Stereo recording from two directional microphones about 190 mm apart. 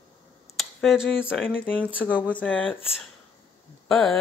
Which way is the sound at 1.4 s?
5° right (ahead or behind).